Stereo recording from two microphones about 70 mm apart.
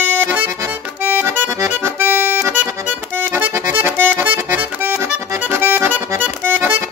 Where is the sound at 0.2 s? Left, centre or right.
Right.